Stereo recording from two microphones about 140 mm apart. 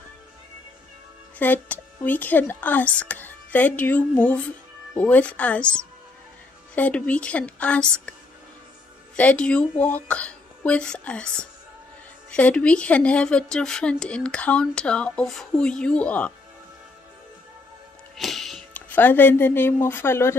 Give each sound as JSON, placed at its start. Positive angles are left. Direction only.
{"t": 1.4, "sound": "a woman's voice", "side_deg": 10}
{"t": 9.1, "sound": "a woman's voice", "side_deg": 10}
{"t": 18.1, "sound": "music", "side_deg": 0}
{"t": 18.7, "sound": "a woman's voice", "side_deg": 15}